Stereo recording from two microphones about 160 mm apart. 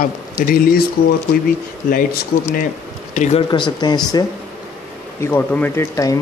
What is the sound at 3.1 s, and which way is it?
Speech, 45° left (ahead or behind).